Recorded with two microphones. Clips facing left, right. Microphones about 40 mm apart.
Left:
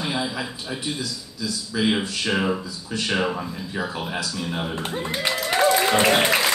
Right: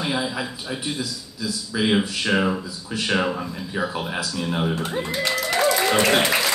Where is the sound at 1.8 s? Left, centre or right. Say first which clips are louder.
Right 2 dB; centre.